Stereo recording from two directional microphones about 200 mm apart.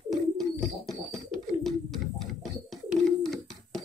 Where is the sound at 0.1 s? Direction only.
Centre (ahead or behind).